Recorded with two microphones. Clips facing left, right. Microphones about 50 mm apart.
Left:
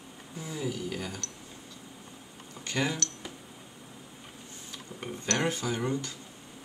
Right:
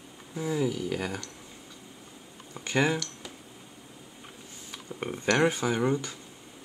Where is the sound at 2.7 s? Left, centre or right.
Right.